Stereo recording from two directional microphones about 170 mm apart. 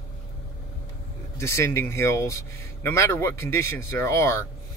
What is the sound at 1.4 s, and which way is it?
Speech, 15° left (ahead or behind).